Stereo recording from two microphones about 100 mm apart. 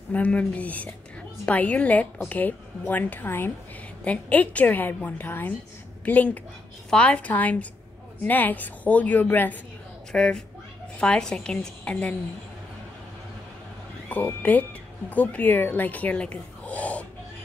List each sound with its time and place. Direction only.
0.1 s a woman's voice: 15° left (ahead or behind)
10.1 s a woman's voice: 5° left (ahead or behind)
14.0 s speech: 15° left (ahead or behind)